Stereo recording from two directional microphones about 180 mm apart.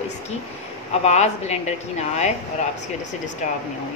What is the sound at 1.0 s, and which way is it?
A woman's voice, 40° left (ahead or behind).